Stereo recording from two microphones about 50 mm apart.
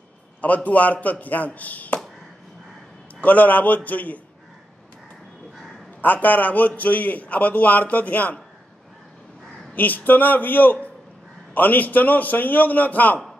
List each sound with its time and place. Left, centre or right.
0.7 s a man's voice: left
3.2 s a man's voice: left
5.9 s a man's voice: left
9.8 s a man's voice: left